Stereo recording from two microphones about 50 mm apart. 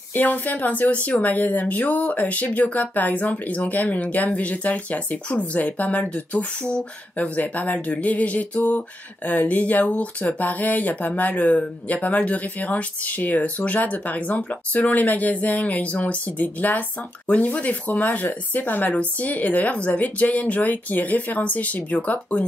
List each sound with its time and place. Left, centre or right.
0.1 s speech: left; by 6.9 s centre
7.2 s speech: left